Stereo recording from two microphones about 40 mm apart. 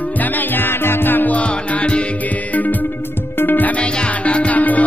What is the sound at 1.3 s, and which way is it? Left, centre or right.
Music, left.